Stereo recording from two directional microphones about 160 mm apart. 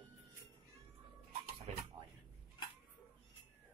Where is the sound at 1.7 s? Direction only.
40° right (ahead or behind).